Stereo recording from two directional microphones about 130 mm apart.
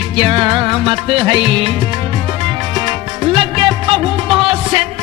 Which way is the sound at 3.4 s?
40° right (ahead or behind).